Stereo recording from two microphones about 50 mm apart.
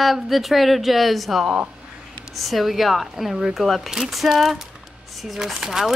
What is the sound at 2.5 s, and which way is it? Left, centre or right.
A woman's voice, centre.